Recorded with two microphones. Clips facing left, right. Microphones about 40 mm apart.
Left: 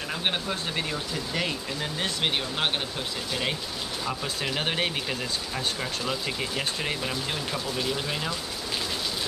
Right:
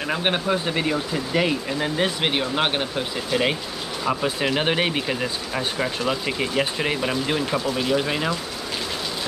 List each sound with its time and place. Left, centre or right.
0.1 s speech: right